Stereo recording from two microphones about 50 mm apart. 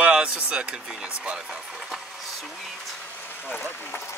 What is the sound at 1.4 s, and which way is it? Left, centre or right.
Vehicle, centre.